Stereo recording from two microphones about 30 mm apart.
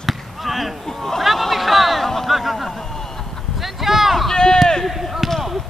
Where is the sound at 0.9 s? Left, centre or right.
Centre.